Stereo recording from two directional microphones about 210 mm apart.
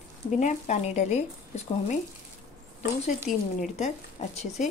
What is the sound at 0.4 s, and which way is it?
Speech, 35° left (ahead or behind).